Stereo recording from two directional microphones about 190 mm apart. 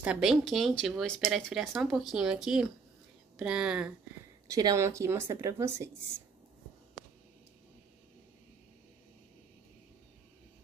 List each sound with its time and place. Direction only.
0.0 s speech: 5° right (ahead or behind)
4.5 s a woman's voice: 20° right (ahead or behind)